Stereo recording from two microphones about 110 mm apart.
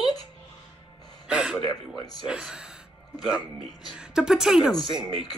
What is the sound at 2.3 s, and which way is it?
Speech, 5° right (ahead or behind).